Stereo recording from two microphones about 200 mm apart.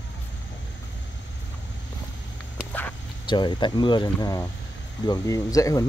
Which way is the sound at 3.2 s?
25° left (ahead or behind).